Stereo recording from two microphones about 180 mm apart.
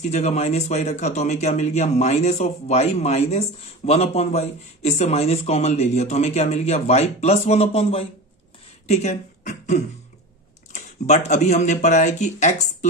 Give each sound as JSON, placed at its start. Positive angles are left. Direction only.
{"t": 0.0, "sound": "speech", "side_deg": 40}